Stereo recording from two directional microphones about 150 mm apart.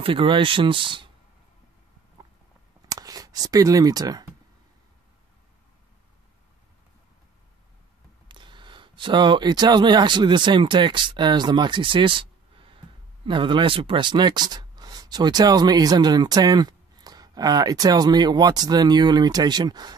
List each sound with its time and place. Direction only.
0.0 s speech: 35° right (ahead or behind)
2.9 s a sound: 25° right (ahead or behind)
8.3 s speech: 30° right (ahead or behind)